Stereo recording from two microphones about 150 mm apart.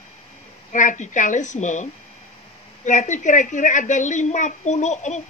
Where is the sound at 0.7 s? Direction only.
55° left (ahead or behind).